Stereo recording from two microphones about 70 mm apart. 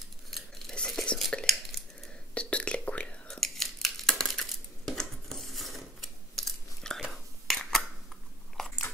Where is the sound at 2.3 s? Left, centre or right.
Centre.